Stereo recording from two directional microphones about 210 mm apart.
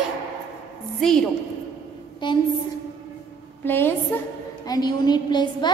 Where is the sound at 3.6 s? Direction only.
10° left (ahead or behind).